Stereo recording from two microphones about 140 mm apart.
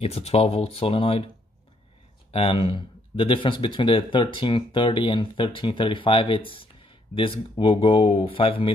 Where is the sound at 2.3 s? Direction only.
40° left (ahead or behind).